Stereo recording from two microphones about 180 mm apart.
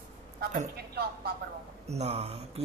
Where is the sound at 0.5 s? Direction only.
60° right (ahead or behind).